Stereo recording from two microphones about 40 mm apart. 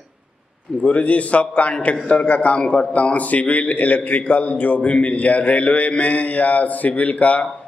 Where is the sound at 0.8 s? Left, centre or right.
Left.